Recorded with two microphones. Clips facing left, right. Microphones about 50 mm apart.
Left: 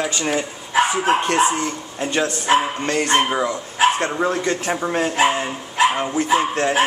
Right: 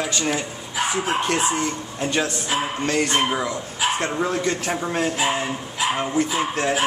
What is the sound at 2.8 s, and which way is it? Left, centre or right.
Speech, centre.